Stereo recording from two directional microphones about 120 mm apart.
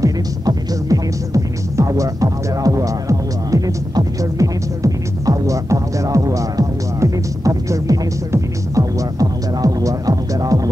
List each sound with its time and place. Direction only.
0.0 s music: 30° right (ahead or behind)